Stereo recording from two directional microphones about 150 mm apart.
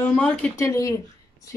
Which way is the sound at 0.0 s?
10° left (ahead or behind).